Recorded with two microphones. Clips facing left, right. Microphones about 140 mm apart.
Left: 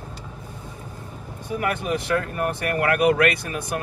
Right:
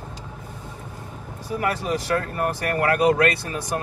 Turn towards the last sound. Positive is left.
turn(degrees=-35)  # may be behind; listen again after turning